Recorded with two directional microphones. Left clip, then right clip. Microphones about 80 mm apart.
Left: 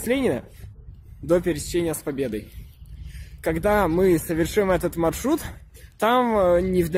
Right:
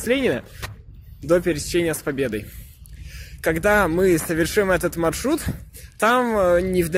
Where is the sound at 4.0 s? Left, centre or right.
Left.